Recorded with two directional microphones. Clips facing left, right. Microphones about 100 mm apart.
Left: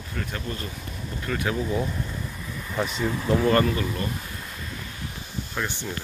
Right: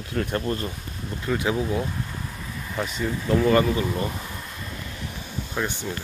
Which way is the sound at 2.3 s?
Centre (ahead or behind).